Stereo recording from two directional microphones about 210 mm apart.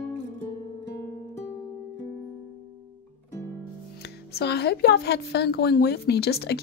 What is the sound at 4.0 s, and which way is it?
A woman's voice, 50° left (ahead or behind).